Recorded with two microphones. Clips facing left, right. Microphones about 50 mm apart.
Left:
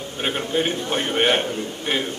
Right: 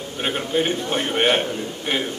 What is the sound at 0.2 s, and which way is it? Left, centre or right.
A man's voice, centre.